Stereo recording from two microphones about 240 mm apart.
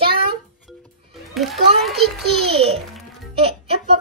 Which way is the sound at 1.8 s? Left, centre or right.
Centre.